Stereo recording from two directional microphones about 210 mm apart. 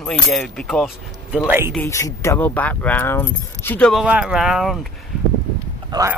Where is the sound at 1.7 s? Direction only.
15° left (ahead or behind).